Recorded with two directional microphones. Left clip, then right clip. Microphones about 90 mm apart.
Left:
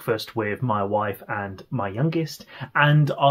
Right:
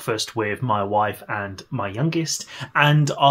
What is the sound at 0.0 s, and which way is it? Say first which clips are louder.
Speech: right 1 dB; 20° right (ahead or behind).